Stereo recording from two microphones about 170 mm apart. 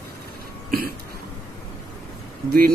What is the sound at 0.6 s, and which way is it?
Throat clearing, 60° right (ahead or behind).